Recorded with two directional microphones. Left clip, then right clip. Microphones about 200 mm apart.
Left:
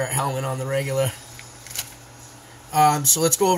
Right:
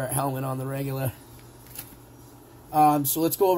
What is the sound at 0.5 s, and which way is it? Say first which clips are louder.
Speech: left 7 dB; 15° right (ahead or behind).